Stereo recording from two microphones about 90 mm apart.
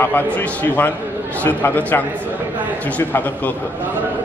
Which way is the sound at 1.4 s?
20° left (ahead or behind).